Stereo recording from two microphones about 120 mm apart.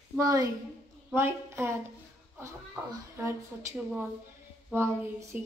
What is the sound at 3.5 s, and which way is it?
Child singing, 10° right (ahead or behind).